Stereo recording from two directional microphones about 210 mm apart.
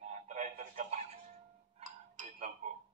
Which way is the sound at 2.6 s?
40° right (ahead or behind).